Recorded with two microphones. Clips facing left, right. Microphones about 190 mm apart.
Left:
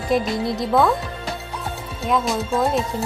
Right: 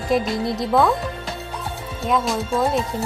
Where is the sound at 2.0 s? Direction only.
Centre (ahead or behind).